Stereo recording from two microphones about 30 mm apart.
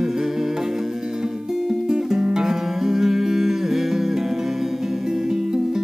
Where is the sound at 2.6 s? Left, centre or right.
Centre.